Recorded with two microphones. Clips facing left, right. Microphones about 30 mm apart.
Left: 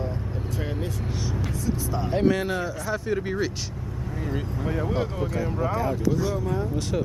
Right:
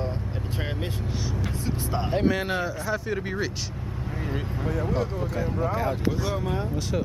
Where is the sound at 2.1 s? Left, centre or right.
Centre.